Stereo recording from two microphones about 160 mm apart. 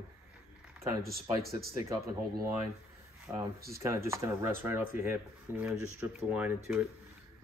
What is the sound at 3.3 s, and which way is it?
Speech, 15° right (ahead or behind).